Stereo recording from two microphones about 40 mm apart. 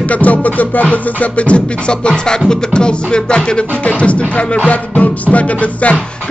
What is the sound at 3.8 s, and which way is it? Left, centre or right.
Music, left.